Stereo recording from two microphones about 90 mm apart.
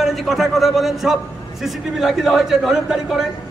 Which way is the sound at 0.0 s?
Centre (ahead or behind).